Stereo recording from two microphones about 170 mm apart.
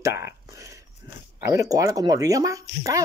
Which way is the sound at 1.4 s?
20° right (ahead or behind).